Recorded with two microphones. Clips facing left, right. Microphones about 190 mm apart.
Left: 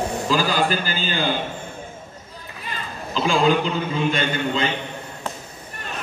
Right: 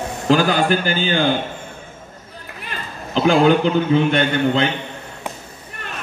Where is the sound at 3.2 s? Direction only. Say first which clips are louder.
Right 5 dB; 65° right (ahead or behind).